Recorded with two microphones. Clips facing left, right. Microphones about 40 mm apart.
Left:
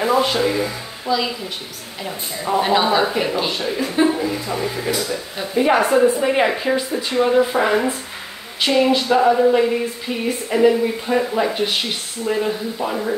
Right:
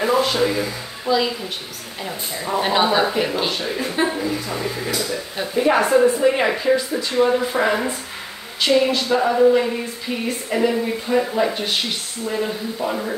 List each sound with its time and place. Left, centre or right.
0.4 s a woman's voice: centre
1.1 s a woman's voice: centre
2.6 s a woman's voice: centre
3.7 s a woman's voice: centre
7.2 s a woman's voice: centre